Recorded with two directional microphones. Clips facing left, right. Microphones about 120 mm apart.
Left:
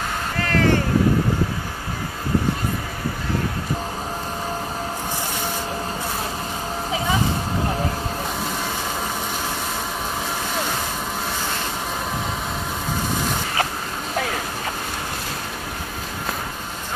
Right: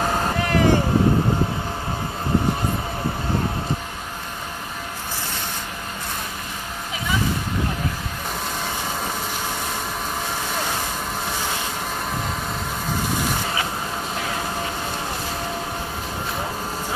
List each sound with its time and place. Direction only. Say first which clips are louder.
0.4 s vehicle: even; 15° right (ahead or behind)